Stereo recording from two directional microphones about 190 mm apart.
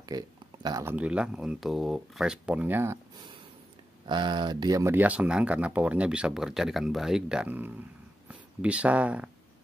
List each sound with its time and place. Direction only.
0.1 s speech: 20° right (ahead or behind)
0.9 s speech: 5° right (ahead or behind)
4.1 s speech: 25° right (ahead or behind); by 9.3 s 5° right (ahead or behind)